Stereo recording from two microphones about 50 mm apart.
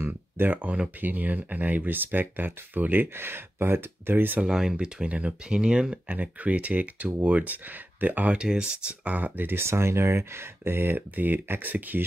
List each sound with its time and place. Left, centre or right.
0.0 s a sound: right
0.6 s speech: right
4.5 s speech: centre
6.0 s speech: right
8.5 s speech: centre
9.0 s speech: right
9.6 s speech: right